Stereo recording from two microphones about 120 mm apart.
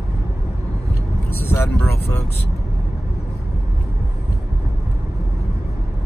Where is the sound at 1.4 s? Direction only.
20° left (ahead or behind).